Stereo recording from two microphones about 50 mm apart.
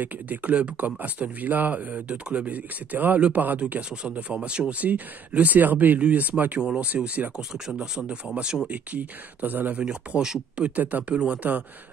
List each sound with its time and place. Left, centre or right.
0.0 s speech: right
3.2 s speech: right
3.4 s speech: right
6.6 s speech: centre
6.9 s speech: right
7.3 s speech: centre
8.6 s speech: right
9.8 s speech: centre
10.8 s speech: right
11.1 s speech: right